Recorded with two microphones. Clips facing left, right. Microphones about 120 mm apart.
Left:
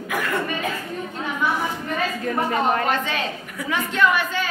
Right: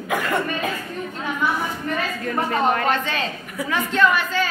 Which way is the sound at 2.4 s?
15° left (ahead or behind).